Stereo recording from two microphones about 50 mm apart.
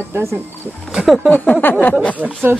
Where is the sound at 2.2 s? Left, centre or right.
Right.